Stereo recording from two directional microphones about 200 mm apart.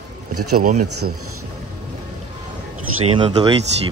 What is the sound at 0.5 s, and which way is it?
Speech, 40° right (ahead or behind).